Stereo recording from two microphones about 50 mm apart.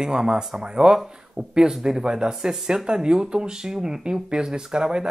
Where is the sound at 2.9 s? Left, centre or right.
Centre.